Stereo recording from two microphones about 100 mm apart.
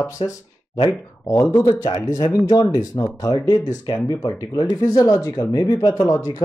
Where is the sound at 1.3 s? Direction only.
25° left (ahead or behind).